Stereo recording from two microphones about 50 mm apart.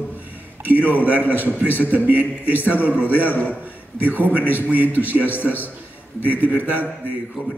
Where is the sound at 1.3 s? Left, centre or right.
Right.